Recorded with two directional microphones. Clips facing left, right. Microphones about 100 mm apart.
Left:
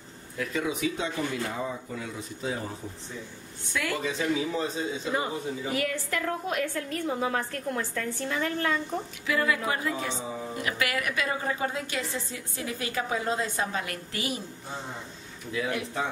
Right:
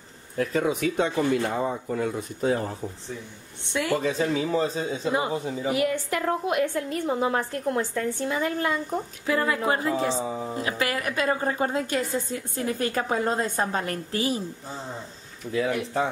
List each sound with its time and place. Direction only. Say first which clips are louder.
0.4 s speech: right 5 dB; 45° right (ahead or behind)
3.6 s a woman's voice: right 5 dB; 25° right (ahead or behind)
4.0 s a woman's voice: right 3 dB; 35° right (ahead or behind)
5.7 s a woman's voice: right 6 dB; 20° right (ahead or behind)
9.2 s a woman's voice: right 2 dB; 35° right (ahead or behind)